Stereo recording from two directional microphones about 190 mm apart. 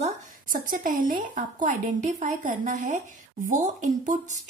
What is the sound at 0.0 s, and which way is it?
Speech, 45° right (ahead or behind).